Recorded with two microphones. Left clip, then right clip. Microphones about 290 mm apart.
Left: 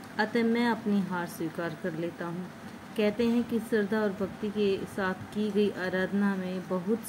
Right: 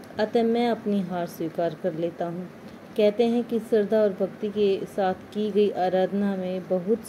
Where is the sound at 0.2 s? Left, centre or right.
Centre.